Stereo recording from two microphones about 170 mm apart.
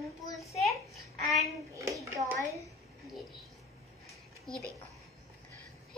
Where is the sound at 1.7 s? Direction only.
20° right (ahead or behind).